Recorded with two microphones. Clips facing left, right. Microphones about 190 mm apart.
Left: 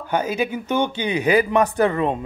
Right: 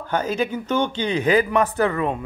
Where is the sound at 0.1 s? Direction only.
10° left (ahead or behind).